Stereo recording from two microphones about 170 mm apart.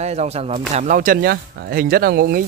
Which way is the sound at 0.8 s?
50° right (ahead or behind).